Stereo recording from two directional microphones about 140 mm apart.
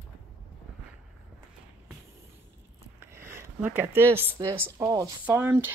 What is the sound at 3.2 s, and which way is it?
Speech, 15° right (ahead or behind).